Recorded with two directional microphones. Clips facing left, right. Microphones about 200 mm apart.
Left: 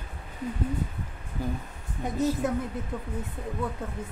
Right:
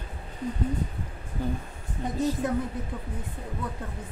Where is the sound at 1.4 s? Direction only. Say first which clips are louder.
Right 1 dB; 10° left (ahead or behind).